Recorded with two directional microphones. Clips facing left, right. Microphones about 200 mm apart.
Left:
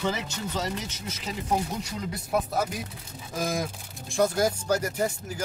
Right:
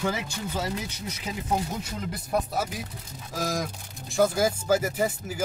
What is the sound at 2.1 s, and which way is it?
Speech, centre (ahead or behind).